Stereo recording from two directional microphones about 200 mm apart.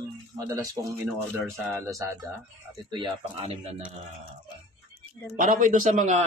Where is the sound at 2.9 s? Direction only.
25° right (ahead or behind).